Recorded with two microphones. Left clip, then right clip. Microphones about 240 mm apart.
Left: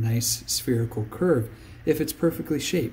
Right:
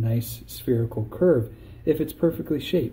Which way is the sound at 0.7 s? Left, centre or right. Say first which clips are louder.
Right 6 dB; left.